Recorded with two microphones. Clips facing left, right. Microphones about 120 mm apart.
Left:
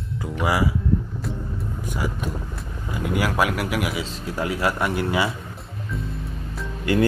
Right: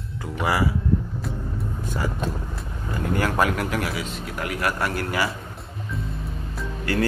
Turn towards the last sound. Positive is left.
turn(degrees=20)  # may be behind; listen again after turning